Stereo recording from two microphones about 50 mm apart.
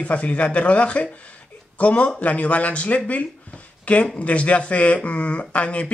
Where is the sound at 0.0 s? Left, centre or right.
Left.